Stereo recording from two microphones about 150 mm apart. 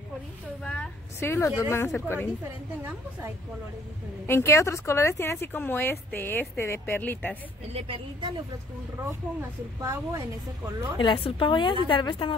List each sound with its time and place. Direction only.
0.7 s a woman's voice: 10° left (ahead or behind)
4.3 s a woman's voice: 20° left (ahead or behind)
7.7 s a woman's voice: 35° right (ahead or behind)
9.8 s a woman's voice: 20° right (ahead or behind)
11.0 s a woman's voice: 35° left (ahead or behind)